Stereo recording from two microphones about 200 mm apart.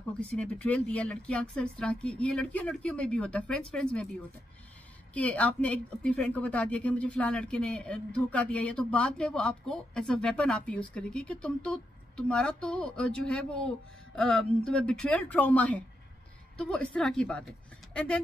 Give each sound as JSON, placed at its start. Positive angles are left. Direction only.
{"t": 0.2, "sound": "a woman's voice", "side_deg": 5}
{"t": 5.1, "sound": "a woman's voice", "side_deg": 5}